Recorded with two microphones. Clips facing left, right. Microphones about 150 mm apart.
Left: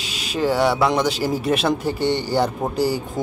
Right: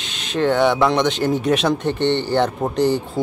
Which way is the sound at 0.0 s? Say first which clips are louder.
Right 2 dB; 5° left (ahead or behind).